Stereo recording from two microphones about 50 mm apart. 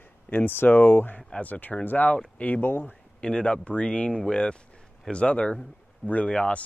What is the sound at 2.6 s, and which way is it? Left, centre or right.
Speech, left.